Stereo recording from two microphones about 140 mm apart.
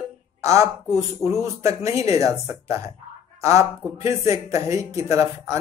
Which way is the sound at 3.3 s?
20° right (ahead or behind).